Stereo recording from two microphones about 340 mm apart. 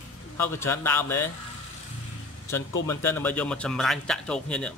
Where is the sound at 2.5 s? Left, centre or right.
Centre.